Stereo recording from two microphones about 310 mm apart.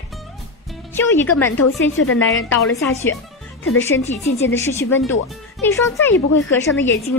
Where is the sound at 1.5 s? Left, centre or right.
Left.